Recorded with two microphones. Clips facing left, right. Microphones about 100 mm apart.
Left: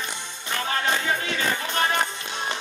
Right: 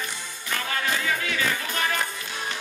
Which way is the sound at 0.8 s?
25° left (ahead or behind).